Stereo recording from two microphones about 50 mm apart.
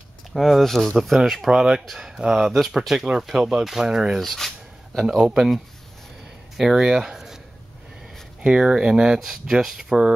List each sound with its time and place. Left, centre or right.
0.3 s speech: centre
1.5 s speech: centre
2.5 s speech: centre
4.2 s a sound: centre
5.0 s speech: centre
6.5 s speech: centre
8.4 s speech: centre
9.2 s speech: centre